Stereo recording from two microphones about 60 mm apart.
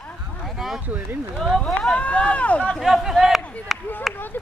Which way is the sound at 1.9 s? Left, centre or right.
Left.